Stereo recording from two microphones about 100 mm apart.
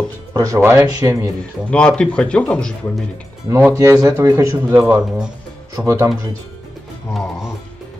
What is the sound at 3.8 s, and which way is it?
Speech, 30° right (ahead or behind).